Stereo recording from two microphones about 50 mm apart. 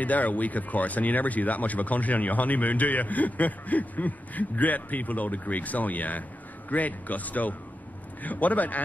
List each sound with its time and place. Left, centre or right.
0.0 s speech: left